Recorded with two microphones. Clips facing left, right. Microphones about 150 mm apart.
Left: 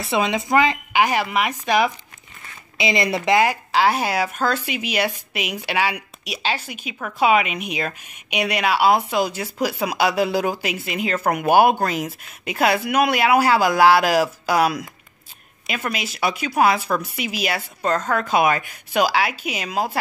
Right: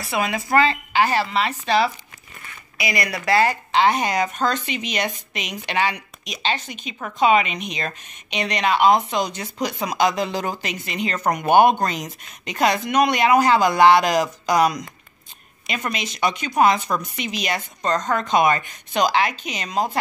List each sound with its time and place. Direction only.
0.0 s speech: 25° left (ahead or behind)
2.8 s speech: 25° left (ahead or behind)
3.3 s speech: 10° left (ahead or behind)